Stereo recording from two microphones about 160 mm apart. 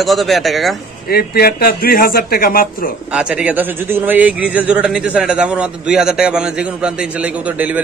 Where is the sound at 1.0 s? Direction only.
70° left (ahead or behind).